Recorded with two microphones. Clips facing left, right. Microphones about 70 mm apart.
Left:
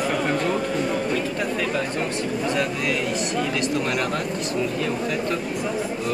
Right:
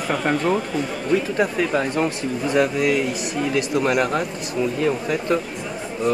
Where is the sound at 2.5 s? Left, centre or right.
Centre.